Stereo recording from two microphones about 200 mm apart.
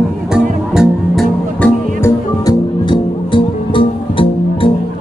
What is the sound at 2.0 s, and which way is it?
Music, 20° left (ahead or behind).